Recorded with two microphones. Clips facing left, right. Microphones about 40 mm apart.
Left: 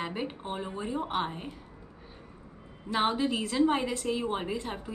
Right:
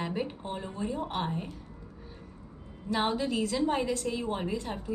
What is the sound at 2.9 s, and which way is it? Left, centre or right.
A woman's voice, centre.